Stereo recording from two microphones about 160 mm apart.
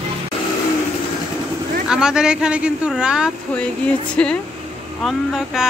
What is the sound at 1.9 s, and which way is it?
Speech, 5° right (ahead or behind).